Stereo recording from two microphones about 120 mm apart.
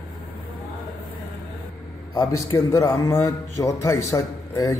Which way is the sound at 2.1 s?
25° left (ahead or behind).